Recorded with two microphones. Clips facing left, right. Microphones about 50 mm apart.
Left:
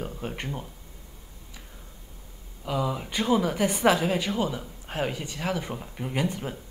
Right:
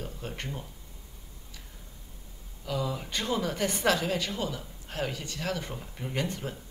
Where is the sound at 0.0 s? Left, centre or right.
Left.